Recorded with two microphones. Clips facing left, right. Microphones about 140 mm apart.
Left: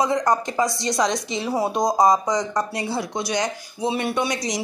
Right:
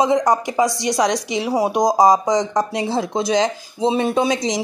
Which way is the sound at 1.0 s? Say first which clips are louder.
Right 4 dB; 80° right.